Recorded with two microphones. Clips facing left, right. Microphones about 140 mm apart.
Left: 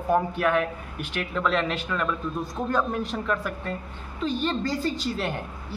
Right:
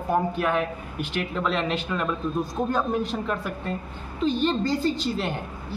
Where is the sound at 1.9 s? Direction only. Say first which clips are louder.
Left 2 dB; 20° right (ahead or behind).